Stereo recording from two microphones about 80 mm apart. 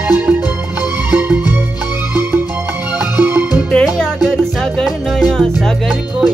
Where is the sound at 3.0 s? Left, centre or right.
Right.